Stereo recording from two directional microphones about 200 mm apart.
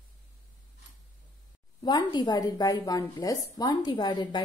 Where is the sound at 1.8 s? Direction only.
20° left (ahead or behind).